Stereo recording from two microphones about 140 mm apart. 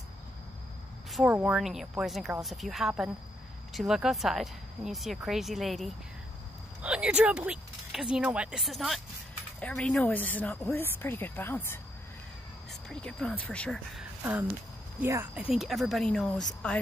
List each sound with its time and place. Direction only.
1.1 s speech: 10° right (ahead or behind); by 11.8 s 15° left (ahead or behind)
12.8 s speech: 5° left (ahead or behind)
15.0 s speech: 20° right (ahead or behind)
15.5 s speech: centre (ahead or behind)